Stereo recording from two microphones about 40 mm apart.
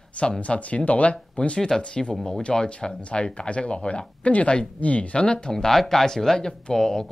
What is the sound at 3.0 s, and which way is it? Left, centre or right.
Speech, left.